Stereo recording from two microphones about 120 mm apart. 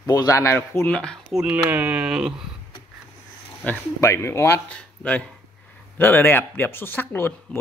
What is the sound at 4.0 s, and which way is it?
Speech, 20° left (ahead or behind).